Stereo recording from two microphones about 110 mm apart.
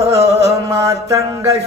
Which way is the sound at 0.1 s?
75° right (ahead or behind).